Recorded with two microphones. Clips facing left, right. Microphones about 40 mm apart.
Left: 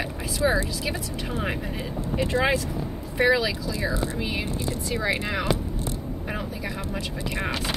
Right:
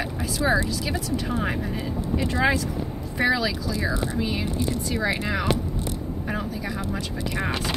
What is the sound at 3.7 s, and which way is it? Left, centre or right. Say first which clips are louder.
Speech: right 1 dB; centre.